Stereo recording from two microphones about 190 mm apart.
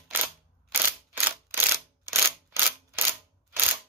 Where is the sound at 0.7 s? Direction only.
10° right (ahead or behind).